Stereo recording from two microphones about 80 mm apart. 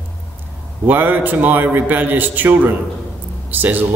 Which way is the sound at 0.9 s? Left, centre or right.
Right.